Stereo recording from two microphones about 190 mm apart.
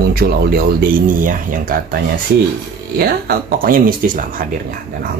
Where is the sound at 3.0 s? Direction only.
55° right (ahead or behind).